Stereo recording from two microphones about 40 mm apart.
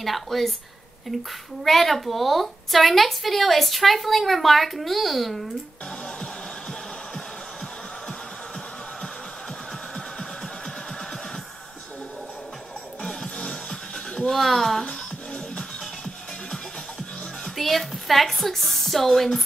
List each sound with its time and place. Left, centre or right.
0.0 s a woman's voice: centre
13.0 s music: centre
14.3 s a woman's voice: centre
17.6 s a woman's voice: centre